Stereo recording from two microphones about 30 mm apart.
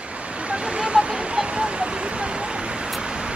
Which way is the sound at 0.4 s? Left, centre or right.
Right.